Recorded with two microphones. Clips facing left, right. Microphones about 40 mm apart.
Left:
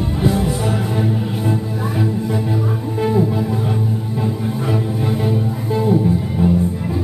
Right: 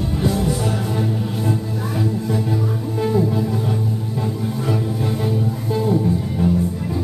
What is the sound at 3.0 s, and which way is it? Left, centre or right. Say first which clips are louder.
Music: left 2 dB; centre.